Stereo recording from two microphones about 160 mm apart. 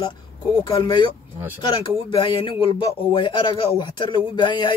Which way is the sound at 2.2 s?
30° left (ahead or behind).